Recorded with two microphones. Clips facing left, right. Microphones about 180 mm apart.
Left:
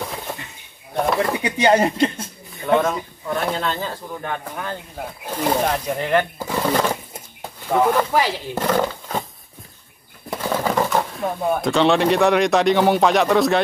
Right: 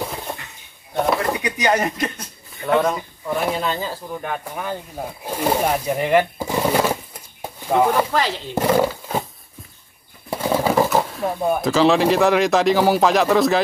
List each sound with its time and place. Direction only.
1.4 s speech: 30° left (ahead or behind)
2.6 s speech: 5° right (ahead or behind)
8.1 s speech: 10° left (ahead or behind)
8.5 s roaring cats: 10° right (ahead or behind)
10.3 s speech: 10° right (ahead or behind)